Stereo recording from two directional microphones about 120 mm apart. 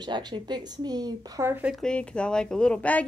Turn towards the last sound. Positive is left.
turn(degrees=10)  # may be behind; listen again after turning